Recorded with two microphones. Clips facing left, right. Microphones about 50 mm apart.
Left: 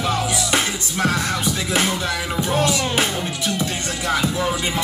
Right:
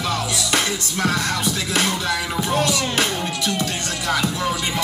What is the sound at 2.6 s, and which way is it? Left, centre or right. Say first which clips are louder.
Music: left 1 dB; centre.